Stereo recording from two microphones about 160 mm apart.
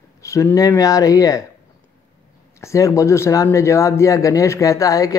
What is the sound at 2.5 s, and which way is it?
Speech, 20° left (ahead or behind).